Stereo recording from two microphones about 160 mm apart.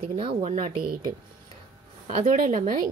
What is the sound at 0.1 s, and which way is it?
Speech, 35° right (ahead or behind).